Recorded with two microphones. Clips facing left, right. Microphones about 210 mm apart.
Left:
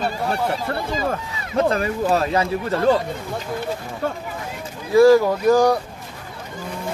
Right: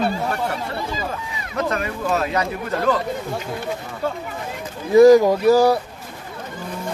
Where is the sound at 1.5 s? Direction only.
35° left (ahead or behind).